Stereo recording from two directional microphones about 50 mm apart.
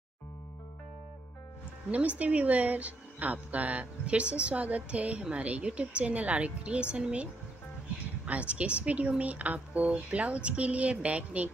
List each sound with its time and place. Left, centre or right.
1.9 s speech: right
8.3 s speech: right